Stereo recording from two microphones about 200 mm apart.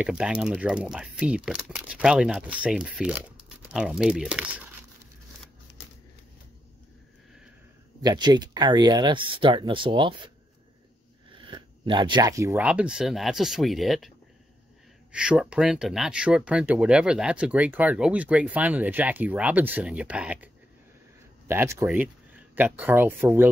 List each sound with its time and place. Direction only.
0.0 s speech: 5° right (ahead or behind)
8.0 s speech: 20° right (ahead or behind)
11.3 s speech: 25° right (ahead or behind); by 14.1 s centre (ahead or behind)
15.1 s speech: 5° right (ahead or behind)
21.5 s speech: 10° right (ahead or behind)